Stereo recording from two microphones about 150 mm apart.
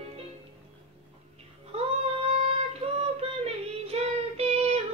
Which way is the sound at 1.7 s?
45° right (ahead or behind).